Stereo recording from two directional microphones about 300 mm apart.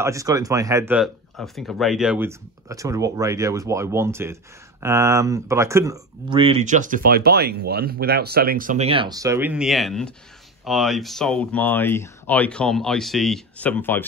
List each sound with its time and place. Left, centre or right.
0.0 s speech: centre